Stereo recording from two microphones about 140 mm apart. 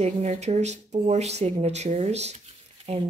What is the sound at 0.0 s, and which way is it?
Speech, 50° right (ahead or behind).